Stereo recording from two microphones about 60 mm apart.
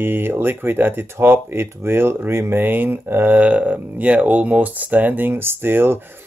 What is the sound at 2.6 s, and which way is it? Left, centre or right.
Speech, right.